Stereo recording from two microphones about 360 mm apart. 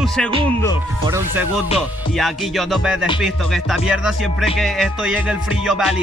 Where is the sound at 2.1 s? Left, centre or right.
Centre.